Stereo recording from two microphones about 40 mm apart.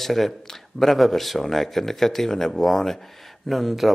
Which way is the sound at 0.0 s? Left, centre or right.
Centre.